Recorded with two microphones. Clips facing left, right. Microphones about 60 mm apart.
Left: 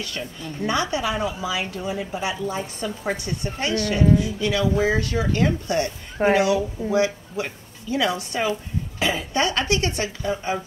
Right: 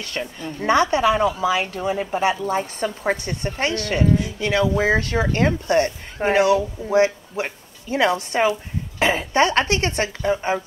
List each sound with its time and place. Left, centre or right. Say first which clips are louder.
0.0 s speech: right 3 dB; right